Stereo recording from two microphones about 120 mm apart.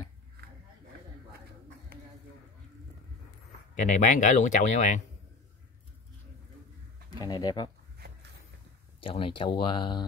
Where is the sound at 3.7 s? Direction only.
90° left.